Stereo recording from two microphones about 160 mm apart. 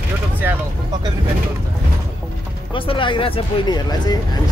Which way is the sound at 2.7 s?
30° left (ahead or behind).